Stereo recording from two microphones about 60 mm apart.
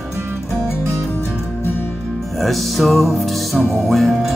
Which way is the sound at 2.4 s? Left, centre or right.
Centre.